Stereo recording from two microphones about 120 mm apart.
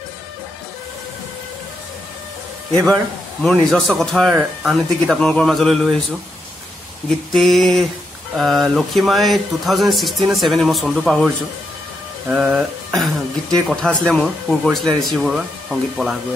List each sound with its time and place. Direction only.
2.7 s a man's voice: 25° right (ahead or behind)
3.7 s speech: 5° left (ahead or behind)
7.3 s speech: centre (ahead or behind)